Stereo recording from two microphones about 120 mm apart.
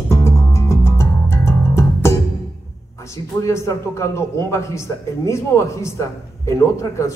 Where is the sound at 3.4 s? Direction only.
25° left (ahead or behind).